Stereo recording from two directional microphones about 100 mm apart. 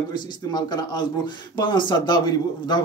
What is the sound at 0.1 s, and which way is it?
Speech, 45° left (ahead or behind).